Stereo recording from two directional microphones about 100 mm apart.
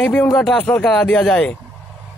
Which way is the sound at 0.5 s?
15° left (ahead or behind).